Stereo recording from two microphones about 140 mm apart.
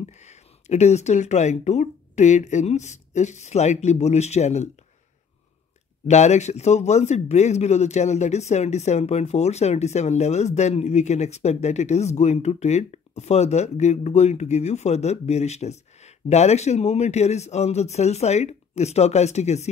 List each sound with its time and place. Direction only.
0.2 s speech: 55° left (ahead or behind)
6.0 s a man's voice: 55° left (ahead or behind)